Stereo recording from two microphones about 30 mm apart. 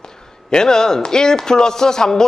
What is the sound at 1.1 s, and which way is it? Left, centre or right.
A man's voice, left.